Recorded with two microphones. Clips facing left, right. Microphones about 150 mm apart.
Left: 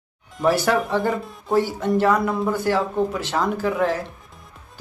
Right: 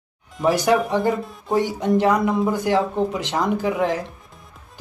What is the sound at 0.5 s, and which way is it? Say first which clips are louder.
Speech: right 1 dB; 15° right (ahead or behind).